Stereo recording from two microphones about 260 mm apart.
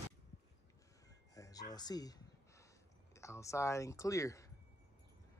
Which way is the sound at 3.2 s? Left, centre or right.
Centre.